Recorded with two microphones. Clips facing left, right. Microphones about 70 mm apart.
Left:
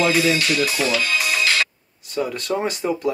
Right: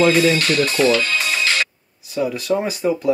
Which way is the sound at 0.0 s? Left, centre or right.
Centre.